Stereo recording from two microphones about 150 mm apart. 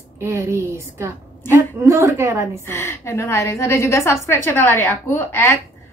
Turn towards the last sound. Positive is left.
turn(degrees=15)  # may be behind; listen again after turning